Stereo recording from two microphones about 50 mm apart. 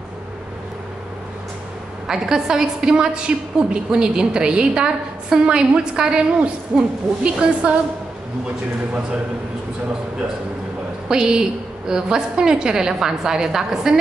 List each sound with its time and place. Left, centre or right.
2.0 s a woman's voice: centre
11.1 s a woman's voice: centre